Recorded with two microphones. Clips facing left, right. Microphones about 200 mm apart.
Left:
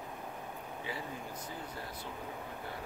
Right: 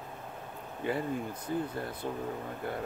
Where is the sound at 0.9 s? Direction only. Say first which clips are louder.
Right 11 dB; 55° right (ahead or behind).